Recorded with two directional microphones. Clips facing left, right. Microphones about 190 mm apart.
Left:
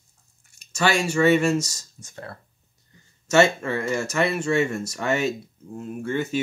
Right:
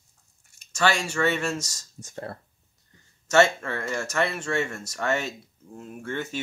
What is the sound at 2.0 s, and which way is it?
Speech, 40° right (ahead or behind).